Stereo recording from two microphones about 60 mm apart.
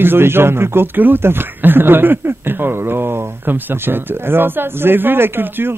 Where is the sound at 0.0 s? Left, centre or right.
Right.